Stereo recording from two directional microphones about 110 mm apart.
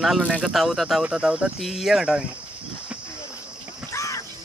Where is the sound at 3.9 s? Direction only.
30° left (ahead or behind).